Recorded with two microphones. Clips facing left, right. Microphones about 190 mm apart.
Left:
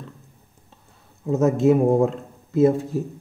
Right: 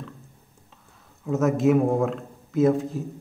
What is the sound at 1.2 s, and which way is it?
Speech, 30° left (ahead or behind).